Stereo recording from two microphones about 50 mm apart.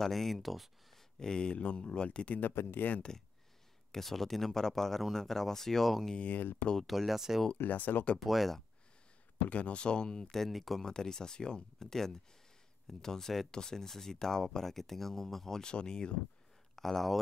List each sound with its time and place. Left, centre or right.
0.0 s speech: centre
1.2 s speech: centre
2.5 s speech: left
3.0 s speech: centre
6.1 s speech: left
6.8 s speech: centre
7.5 s speech: left
8.2 s speech: centre
9.5 s speech: left
10.3 s speech: centre
16.7 s speech: centre